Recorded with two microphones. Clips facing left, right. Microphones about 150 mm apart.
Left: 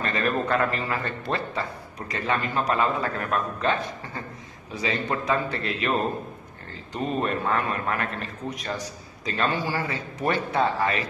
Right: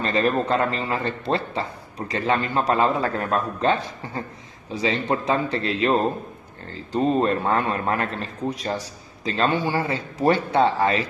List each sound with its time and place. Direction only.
0.0 s a man's voice: 30° right (ahead or behind)